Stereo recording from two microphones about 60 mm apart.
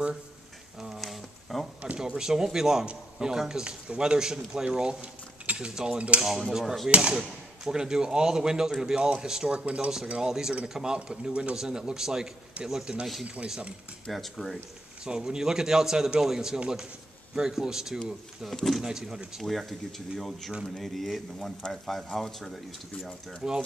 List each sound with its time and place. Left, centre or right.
0.7 s a sound: centre
2.0 s a man's voice: centre
6.2 s speech: centre
6.9 s a man's voice: centre
9.6 s a man's voice: right
14.0 s speech: centre
15.0 s a man's voice: centre
18.5 s speech: centre
18.8 s a man's voice: centre
19.4 s speech: centre
23.4 s a man's voice: centre